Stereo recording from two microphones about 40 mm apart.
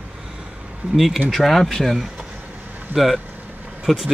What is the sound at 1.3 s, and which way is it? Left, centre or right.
Speech, centre.